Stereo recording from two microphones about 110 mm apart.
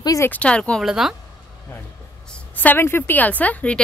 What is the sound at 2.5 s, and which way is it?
A woman's voice, 15° left (ahead or behind).